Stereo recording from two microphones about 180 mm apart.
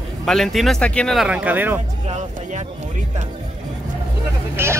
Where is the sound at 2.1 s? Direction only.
40° right (ahead or behind).